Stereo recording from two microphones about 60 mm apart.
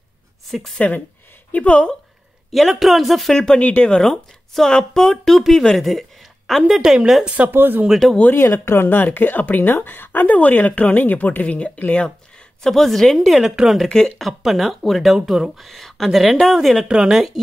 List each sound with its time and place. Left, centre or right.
0.5 s speech: centre
0.7 s a woman's voice: left
2.5 s speech: centre
3.3 s a woman's voice: centre
7.4 s speech: right
8.0 s speech: centre
8.4 s a woman's voice: left
12.6 s speech: centre
13.8 s speech: centre
16.8 s speech: centre